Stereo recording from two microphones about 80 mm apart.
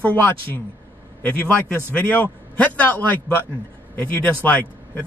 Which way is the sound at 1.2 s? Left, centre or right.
Left.